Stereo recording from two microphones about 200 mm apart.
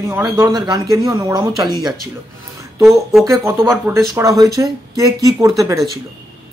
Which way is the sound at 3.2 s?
15° right (ahead or behind).